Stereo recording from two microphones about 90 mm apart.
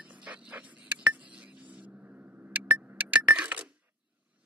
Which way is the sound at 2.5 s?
15° right (ahead or behind).